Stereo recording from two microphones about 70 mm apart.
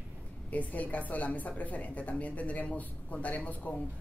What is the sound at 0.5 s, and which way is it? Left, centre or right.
A woman's voice, left.